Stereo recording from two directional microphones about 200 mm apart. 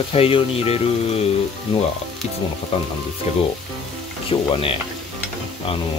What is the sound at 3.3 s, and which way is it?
Frying, 30° left (ahead or behind).